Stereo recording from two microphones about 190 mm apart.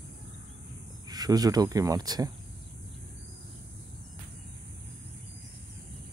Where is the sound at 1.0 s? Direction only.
20° right (ahead or behind).